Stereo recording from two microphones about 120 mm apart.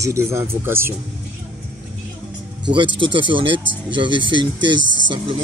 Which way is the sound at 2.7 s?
45° right (ahead or behind).